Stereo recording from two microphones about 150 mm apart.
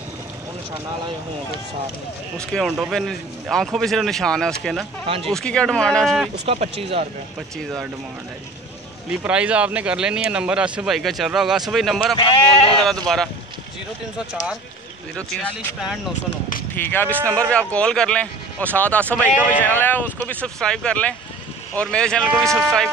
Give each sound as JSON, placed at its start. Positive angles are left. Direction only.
{"t": 2.5, "sound": "speech", "side_deg": 0}
{"t": 5.0, "sound": "speech", "side_deg": -40}
{"t": 5.3, "sound": "speech", "side_deg": 5}
{"t": 6.4, "sound": "speech", "side_deg": -45}
{"t": 9.1, "sound": "speech", "side_deg": -10}
{"t": 12.2, "sound": "speech", "side_deg": 40}
{"t": 16.7, "sound": "speech", "side_deg": 15}